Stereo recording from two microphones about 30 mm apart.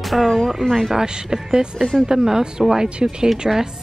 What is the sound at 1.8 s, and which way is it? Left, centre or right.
Speech, centre.